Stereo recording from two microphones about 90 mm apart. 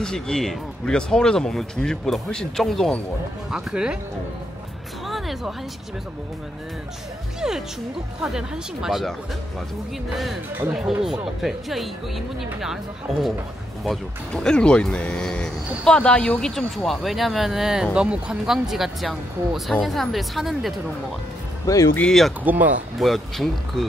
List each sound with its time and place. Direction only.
0.0 s speech: 5° left (ahead or behind)
3.4 s speech: 10° right (ahead or behind)
5.0 s music: centre (ahead or behind)
7.3 s speech: 5° right (ahead or behind)
10.1 s speech: centre (ahead or behind)
13.8 s speech: 10° left (ahead or behind)
21.6 s speech: 40° left (ahead or behind)
22.4 s speech: 20° right (ahead or behind)
22.9 s speech: centre (ahead or behind)